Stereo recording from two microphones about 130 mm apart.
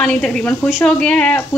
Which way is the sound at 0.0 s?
5° left (ahead or behind).